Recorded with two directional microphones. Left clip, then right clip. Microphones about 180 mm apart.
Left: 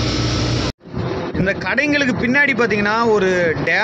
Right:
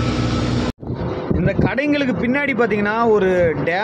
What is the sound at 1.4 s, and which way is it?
A man's voice, 10° right (ahead or behind).